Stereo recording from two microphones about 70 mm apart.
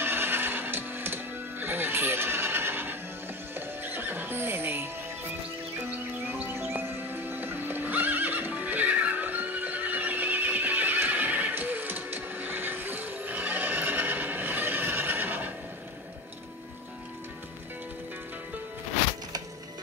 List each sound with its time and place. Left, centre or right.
0.0 s music: right